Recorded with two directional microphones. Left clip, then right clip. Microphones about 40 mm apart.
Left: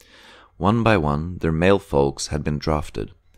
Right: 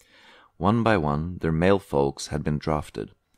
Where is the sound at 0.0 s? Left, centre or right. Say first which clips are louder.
Left 5 dB; centre.